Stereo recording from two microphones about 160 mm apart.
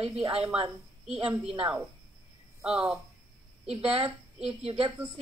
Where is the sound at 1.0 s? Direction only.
5° right (ahead or behind).